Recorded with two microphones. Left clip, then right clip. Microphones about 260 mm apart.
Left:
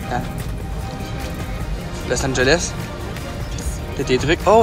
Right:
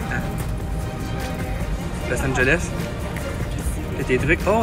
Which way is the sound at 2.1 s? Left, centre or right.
Centre.